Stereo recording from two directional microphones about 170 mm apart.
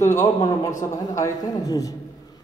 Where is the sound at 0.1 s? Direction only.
15° left (ahead or behind).